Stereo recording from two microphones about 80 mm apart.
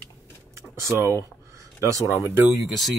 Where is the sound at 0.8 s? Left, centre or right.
Right.